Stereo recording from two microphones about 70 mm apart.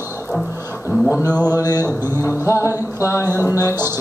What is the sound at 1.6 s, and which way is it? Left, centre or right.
Music, left.